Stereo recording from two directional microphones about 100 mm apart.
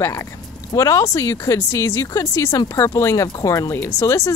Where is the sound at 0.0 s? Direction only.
25° left (ahead or behind).